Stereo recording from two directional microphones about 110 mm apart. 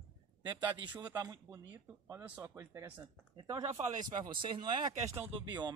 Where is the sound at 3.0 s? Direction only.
35° right (ahead or behind).